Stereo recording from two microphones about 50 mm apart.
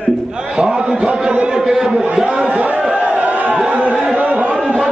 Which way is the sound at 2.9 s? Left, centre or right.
Right.